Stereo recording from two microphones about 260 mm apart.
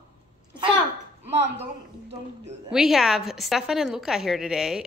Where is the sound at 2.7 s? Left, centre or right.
Centre.